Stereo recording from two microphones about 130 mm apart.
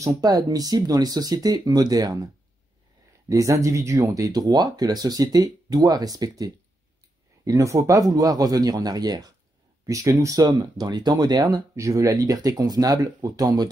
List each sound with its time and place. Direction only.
0.0 s speech: 25° right (ahead or behind)
3.3 s speech: 25° right (ahead or behind)